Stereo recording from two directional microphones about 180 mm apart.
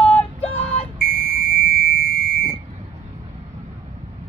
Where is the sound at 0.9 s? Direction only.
65° left (ahead or behind).